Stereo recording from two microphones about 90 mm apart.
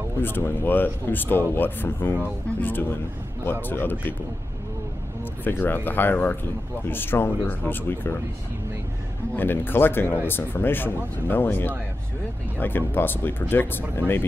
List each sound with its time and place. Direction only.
0.2 s speech: 20° left (ahead or behind)
5.4 s speech: 20° left (ahead or behind)
9.3 s speech: 25° left (ahead or behind)